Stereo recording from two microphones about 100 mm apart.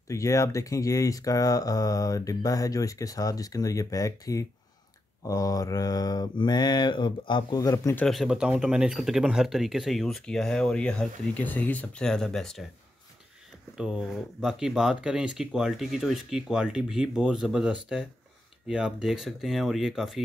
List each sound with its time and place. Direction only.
0.1 s speech: 30° left (ahead or behind)
5.2 s mantra: 35° left (ahead or behind); by 7.5 s 55° left (ahead or behind)
7.5 s speech: 35° left (ahead or behind)
8.1 s speech: centre (ahead or behind)
13.7 s speech: 5° right (ahead or behind)